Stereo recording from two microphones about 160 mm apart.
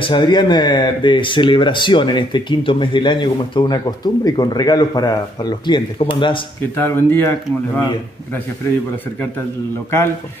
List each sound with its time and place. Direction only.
0.0 s speech: 30° left (ahead or behind)
6.8 s speech: 15° left (ahead or behind)